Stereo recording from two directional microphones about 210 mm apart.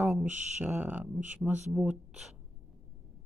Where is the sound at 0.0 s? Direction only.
5° right (ahead or behind).